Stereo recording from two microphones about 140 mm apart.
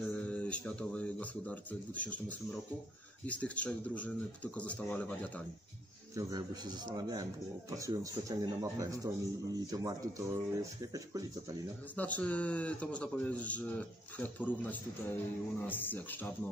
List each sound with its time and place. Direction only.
0.1 s a man's voice: 10° left (ahead or behind)
6.1 s a man's voice: 30° right (ahead or behind)
11.9 s a man's voice: 10° left (ahead or behind)